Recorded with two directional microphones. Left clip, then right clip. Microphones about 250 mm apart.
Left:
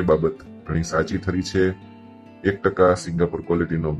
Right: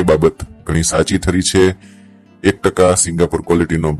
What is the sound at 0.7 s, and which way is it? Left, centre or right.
Speech, right.